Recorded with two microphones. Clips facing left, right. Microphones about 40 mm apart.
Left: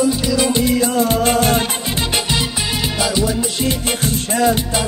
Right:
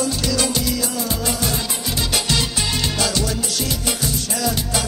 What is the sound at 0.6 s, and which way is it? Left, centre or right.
Music, left.